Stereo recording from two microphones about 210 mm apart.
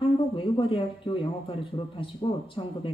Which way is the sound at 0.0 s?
25° left (ahead or behind).